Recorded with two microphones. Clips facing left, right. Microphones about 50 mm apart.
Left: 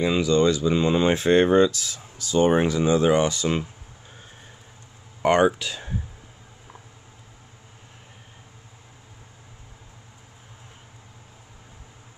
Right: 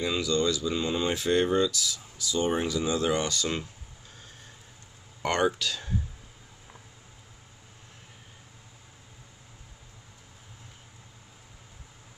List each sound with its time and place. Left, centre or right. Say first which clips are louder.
0.0 s speech: left 7 dB; left
5.2 s speech: left 7 dB; left